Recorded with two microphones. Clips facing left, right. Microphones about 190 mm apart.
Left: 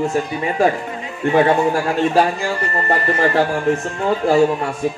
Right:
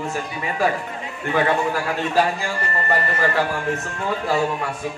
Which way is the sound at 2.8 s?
30° left (ahead or behind).